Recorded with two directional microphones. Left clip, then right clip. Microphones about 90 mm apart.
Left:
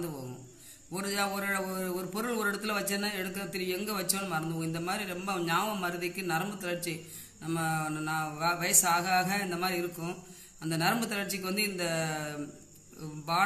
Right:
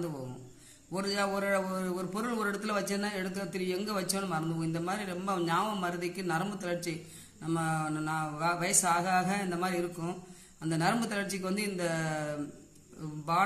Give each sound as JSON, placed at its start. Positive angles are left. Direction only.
{"t": 0.9, "sound": "a man's voice", "side_deg": -30}
{"t": 5.5, "sound": "mantra", "side_deg": -30}